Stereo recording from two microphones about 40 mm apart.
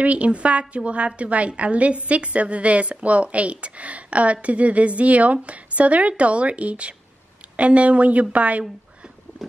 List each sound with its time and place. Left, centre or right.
0.0 s a woman's voice: right